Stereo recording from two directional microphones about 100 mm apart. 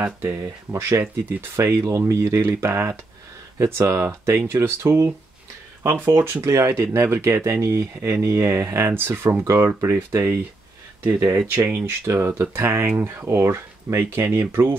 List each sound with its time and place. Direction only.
0.4 s speech: 30° right (ahead or behind)
6.1 s speech: 25° right (ahead or behind)